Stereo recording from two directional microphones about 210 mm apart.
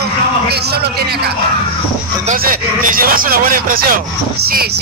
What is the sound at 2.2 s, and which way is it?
Speech, 40° right (ahead or behind).